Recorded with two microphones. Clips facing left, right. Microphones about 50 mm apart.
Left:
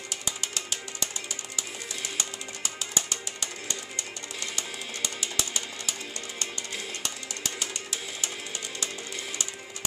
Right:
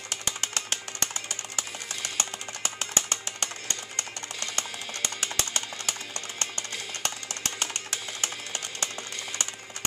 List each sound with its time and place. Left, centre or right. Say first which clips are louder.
0.1 s music: right 3 dB; right